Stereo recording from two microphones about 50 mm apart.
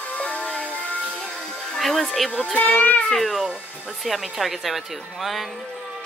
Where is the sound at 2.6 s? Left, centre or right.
Left.